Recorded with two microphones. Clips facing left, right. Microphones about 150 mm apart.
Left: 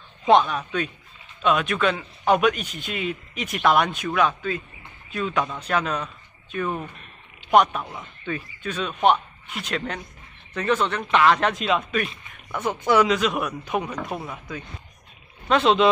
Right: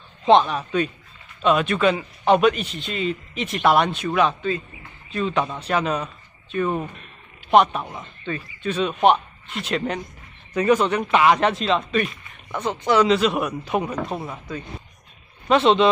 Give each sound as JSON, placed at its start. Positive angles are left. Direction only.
{"t": 0.2, "sound": "a man's voice", "side_deg": 0}
{"t": 7.5, "sound": "a man's voice", "side_deg": -5}
{"t": 11.5, "sound": "a man's voice", "side_deg": 0}
{"t": 12.4, "sound": "speech", "side_deg": -15}
{"t": 12.9, "sound": "a man's voice", "side_deg": 5}